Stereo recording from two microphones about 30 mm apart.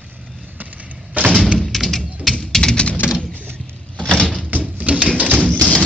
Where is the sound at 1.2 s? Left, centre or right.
Right.